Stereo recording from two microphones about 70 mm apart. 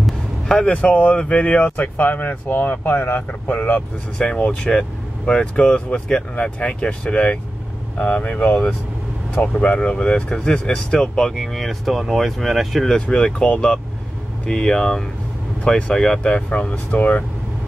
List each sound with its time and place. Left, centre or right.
0.0 s basketball bounce: centre
0.7 s speech: centre